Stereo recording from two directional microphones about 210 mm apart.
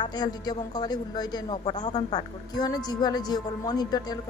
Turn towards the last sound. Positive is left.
turn(degrees=20)  # may be behind; listen again after turning